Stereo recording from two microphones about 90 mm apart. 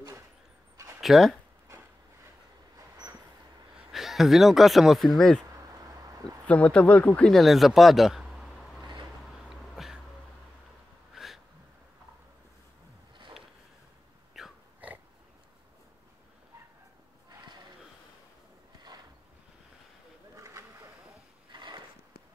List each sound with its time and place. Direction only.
1.0 s speech: centre (ahead or behind)
3.9 s speech: centre (ahead or behind)
6.4 s speech: 15° left (ahead or behind)
7.2 s a man's voice: centre (ahead or behind)
9.5 s a sound: 5° right (ahead or behind)
11.1 s a sound: centre (ahead or behind)
14.3 s pig: 5° right (ahead or behind)
20.3 s boat: 35° right (ahead or behind)
21.5 s a sound: 55° right (ahead or behind)